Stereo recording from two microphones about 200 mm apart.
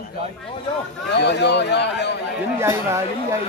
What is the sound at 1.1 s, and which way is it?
A man's voice, 60° left (ahead or behind).